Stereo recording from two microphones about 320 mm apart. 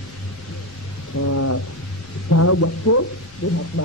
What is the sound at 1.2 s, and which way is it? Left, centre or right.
A woman's voice, left.